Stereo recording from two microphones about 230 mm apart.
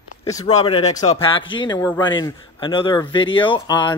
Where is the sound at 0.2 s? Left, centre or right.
Centre.